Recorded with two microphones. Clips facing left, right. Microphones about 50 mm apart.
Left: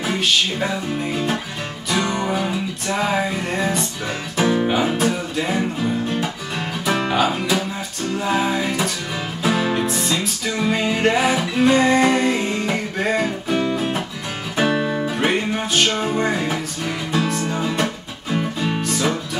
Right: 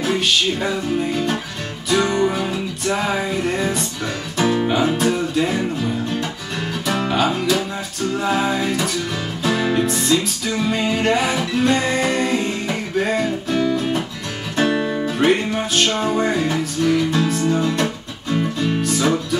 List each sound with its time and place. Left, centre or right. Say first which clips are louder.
0.0 s music: right 1 dB; centre
7.2 s speech: right 2 dB; centre
8.2 s music: even; centre
13.5 s music: right 2 dB; centre
14.6 s music: right 1 dB; centre